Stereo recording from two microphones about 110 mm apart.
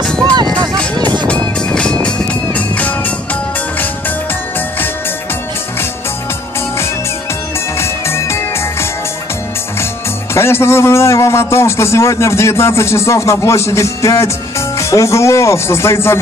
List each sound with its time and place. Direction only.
0.9 s music: 40° right (ahead or behind)
1.7 s music: 10° left (ahead or behind)
7.8 s music: 25° left (ahead or behind)
10.3 s a man's voice: 25° left (ahead or behind)